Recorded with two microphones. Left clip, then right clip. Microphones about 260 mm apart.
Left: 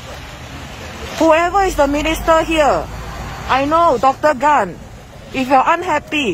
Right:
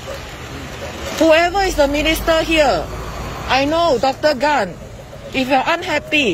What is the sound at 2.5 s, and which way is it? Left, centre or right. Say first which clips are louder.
Speech: left 1 dB; centre.